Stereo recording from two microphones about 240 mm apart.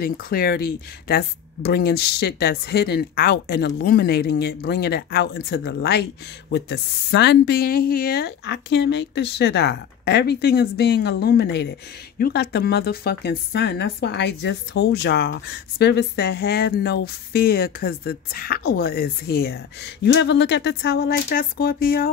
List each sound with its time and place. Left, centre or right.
0.0 s speech: left